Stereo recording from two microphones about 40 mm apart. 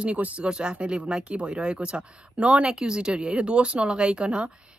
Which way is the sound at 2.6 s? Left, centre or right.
Centre.